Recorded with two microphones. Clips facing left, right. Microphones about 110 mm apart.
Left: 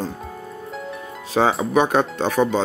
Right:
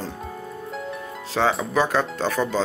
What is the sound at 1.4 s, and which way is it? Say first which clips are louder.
Speech: left 3 dB; 30° left (ahead or behind).